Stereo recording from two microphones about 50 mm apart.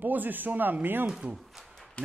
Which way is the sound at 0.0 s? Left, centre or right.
Right.